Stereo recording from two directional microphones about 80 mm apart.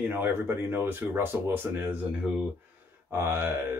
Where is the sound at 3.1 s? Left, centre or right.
Right.